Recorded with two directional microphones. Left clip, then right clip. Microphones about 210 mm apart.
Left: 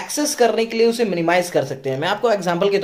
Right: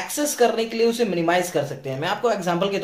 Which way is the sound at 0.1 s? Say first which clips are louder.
Left 3 dB; 30° left (ahead or behind).